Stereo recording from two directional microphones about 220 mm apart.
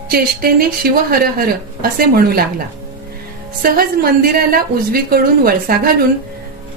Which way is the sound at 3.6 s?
40° right (ahead or behind).